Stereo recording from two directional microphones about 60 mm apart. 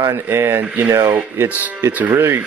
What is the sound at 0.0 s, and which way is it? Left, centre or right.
Speech, right.